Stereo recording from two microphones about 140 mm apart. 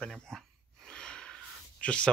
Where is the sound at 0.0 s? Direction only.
5° left (ahead or behind).